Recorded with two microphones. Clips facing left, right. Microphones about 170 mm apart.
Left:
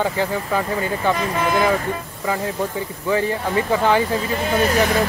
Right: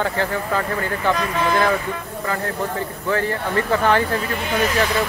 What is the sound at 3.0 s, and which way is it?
Speech, 15° left (ahead or behind).